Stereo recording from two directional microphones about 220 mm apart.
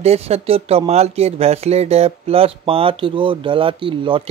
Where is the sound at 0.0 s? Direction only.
30° right (ahead or behind).